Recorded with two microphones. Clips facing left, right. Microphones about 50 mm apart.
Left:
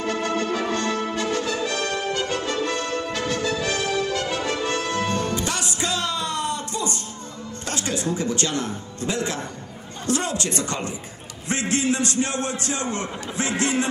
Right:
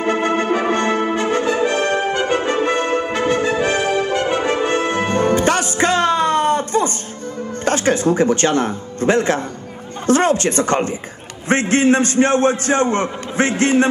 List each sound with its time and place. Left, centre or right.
0.0 s brass instrument: right
7.6 s a man's voice: right